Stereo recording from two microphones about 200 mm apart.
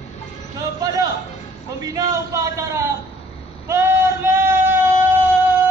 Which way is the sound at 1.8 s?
15° right (ahead or behind).